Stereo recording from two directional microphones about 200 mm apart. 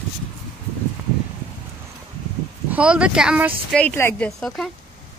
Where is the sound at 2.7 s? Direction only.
5° right (ahead or behind).